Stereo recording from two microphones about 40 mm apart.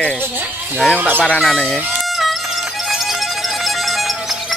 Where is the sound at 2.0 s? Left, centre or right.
Centre.